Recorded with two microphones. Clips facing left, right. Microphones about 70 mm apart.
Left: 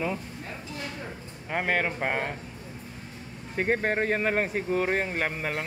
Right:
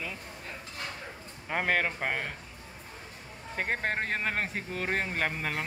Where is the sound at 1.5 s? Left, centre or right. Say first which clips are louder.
Left 2 dB; centre.